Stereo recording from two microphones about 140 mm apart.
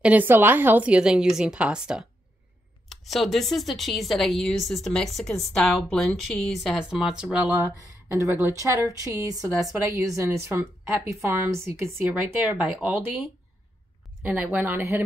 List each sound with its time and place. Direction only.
0.0 s a woman's voice: 10° right (ahead or behind)
8.5 s a woman's voice: 20° right (ahead or behind)
14.2 s a woman's voice: 10° right (ahead or behind)